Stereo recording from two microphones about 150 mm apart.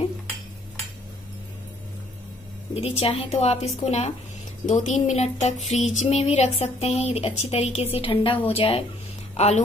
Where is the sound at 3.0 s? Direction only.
40° left (ahead or behind).